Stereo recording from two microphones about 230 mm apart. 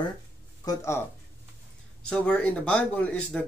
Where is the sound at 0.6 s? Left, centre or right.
Centre.